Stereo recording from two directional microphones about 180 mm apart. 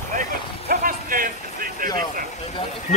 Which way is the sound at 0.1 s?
50° right (ahead or behind).